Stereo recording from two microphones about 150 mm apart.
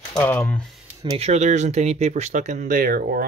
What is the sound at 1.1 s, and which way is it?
Speech, 45° right (ahead or behind).